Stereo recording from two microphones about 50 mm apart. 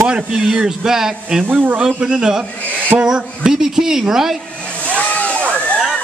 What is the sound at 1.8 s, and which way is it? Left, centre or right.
Speech, centre.